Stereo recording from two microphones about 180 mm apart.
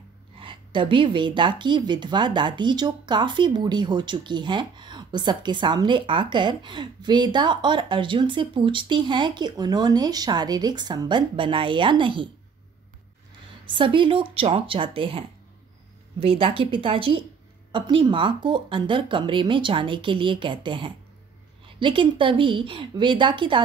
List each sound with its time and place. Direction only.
0.4 s a woman's voice: 30° right (ahead or behind)
13.7 s a woman's voice: 25° right (ahead or behind)